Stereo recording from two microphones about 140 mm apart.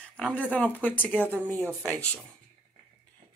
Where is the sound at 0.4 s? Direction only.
10° left (ahead or behind).